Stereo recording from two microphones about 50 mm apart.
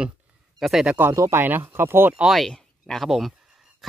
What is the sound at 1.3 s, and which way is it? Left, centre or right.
Speech, right.